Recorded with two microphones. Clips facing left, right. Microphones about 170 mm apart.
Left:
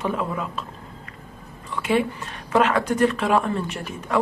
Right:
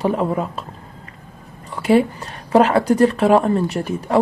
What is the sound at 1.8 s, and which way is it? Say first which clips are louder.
Speech: right 7 dB; 35° right (ahead or behind).